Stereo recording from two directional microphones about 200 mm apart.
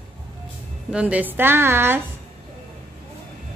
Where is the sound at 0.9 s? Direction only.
5° right (ahead or behind).